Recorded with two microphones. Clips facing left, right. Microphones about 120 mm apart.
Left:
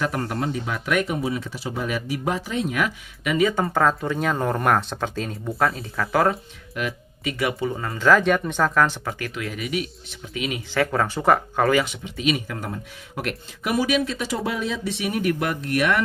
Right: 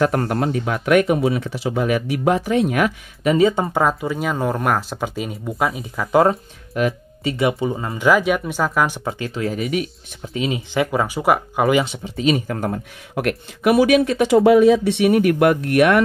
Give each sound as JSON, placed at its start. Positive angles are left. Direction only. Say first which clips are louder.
{"t": 0.2, "sound": "speech", "louder": "right 5 dB", "side_deg": -70}
{"t": 3.3, "sound": "speech", "louder": "right 5 dB", "side_deg": -30}
{"t": 6.9, "sound": "speech", "louder": "right 5 dB", "side_deg": -25}
{"t": 9.0, "sound": "speech", "louder": "right 6 dB", "side_deg": -25}
{"t": 10.7, "sound": "speech", "louder": "even", "side_deg": -15}
{"t": 11.8, "sound": "speech", "louder": "right 5 dB", "side_deg": -30}